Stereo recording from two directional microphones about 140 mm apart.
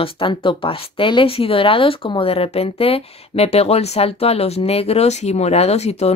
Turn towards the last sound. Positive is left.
turn(degrees=50)  # may be behind; listen again after turning